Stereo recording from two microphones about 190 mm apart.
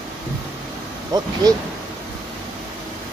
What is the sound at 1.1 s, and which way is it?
Speech, 20° right (ahead or behind).